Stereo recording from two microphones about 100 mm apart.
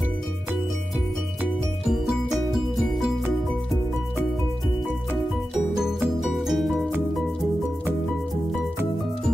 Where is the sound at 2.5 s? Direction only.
Centre (ahead or behind).